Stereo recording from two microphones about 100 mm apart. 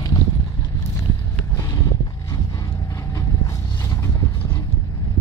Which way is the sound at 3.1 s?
35° left (ahead or behind).